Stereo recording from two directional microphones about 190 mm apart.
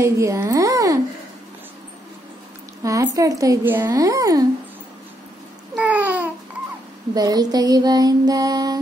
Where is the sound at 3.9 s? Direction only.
20° right (ahead or behind).